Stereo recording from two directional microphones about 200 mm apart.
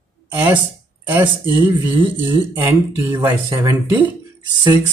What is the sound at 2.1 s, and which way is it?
Speech, 10° right (ahead or behind).